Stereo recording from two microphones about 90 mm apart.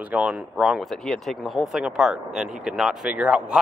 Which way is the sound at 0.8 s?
5° left (ahead or behind).